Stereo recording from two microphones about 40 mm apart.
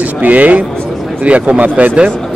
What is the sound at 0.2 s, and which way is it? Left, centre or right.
Speech, right.